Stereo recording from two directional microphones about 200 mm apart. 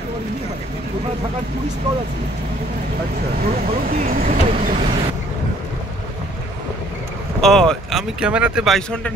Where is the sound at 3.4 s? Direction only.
50° right (ahead or behind).